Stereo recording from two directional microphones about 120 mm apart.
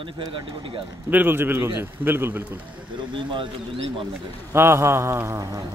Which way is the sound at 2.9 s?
45° right (ahead or behind).